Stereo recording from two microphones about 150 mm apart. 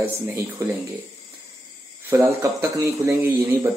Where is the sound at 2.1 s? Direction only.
20° right (ahead or behind).